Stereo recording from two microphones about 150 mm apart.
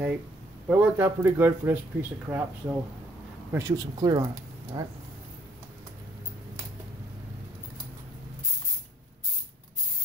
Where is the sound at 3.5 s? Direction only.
20° right (ahead or behind).